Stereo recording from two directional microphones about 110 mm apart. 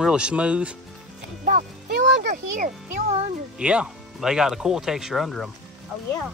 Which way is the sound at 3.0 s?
80° right.